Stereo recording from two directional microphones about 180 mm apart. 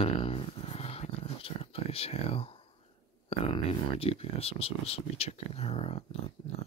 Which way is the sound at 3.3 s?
35° left (ahead or behind).